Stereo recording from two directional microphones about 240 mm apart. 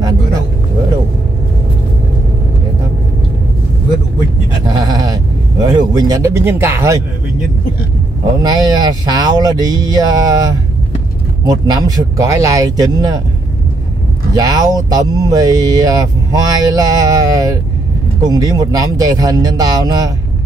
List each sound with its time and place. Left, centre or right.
4.6 s sheep: centre
5.7 s speech: centre
8.4 s speech: centre
14.3 s speech: centre